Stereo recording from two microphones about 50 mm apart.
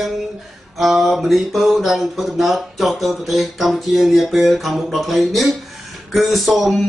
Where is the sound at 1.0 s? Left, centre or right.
Centre.